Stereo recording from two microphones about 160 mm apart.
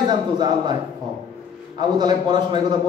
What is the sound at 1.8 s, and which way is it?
Speech, 25° right (ahead or behind).